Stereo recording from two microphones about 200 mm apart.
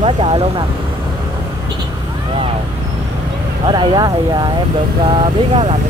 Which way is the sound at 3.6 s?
25° right (ahead or behind).